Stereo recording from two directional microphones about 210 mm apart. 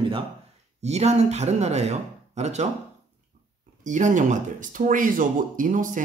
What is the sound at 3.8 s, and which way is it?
Speech, 35° right (ahead or behind).